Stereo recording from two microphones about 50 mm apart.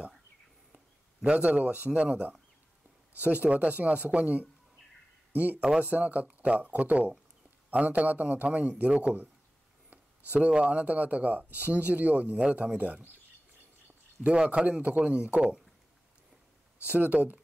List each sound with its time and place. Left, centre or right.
1.2 s speech: right
10.3 s speech: right
14.2 s speech: right
16.8 s speech: right